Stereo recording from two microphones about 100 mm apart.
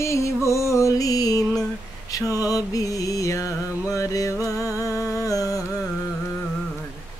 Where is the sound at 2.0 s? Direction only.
35° left (ahead or behind).